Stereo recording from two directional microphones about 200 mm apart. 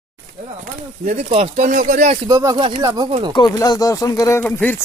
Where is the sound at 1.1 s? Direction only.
30° right (ahead or behind).